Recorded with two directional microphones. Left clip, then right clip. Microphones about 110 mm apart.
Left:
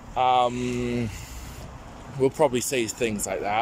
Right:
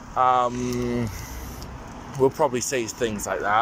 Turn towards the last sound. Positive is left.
turn(degrees=25)  # may be behind; listen again after turning